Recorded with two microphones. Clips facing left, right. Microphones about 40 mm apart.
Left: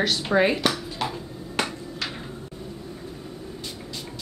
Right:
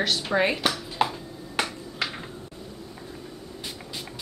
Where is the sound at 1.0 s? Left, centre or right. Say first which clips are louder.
Right 5 dB; right.